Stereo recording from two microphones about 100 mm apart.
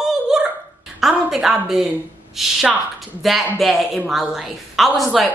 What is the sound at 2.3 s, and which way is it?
A woman's voice, 5° right (ahead or behind).